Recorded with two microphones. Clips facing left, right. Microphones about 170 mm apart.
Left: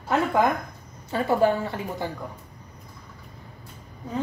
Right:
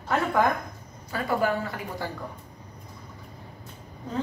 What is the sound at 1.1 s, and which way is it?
Speech, 25° left (ahead or behind).